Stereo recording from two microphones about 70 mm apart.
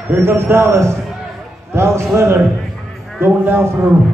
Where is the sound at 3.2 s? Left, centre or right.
Right.